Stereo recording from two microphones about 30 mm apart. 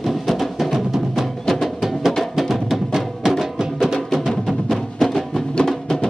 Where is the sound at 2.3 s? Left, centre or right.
Centre.